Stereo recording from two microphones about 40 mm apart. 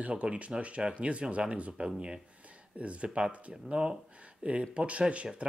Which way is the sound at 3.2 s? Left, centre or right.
Centre.